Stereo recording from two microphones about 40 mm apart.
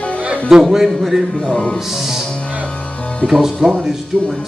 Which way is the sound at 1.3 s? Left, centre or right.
Centre.